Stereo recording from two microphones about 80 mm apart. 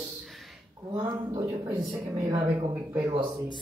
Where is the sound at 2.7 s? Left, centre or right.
Right.